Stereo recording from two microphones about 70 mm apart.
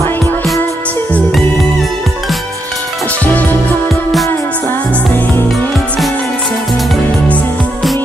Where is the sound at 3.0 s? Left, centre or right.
Left.